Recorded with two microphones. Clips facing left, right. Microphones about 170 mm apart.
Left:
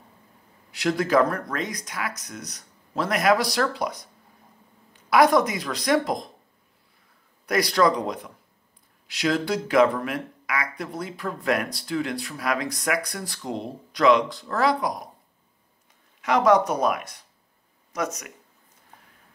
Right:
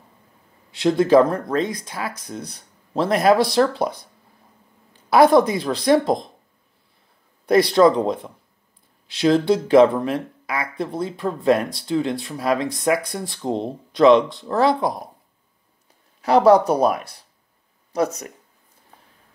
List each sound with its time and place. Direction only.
0.7 s speech: 25° right (ahead or behind)
7.4 s speech: 25° right (ahead or behind)
16.2 s speech: 35° right (ahead or behind)